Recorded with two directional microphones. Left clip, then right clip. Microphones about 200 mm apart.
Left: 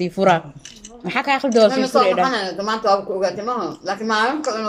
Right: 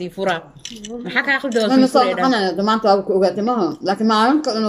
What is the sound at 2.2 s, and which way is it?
Speech, 25° right (ahead or behind).